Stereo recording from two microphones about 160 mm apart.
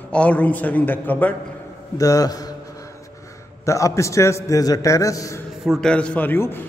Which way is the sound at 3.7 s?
20° left (ahead or behind).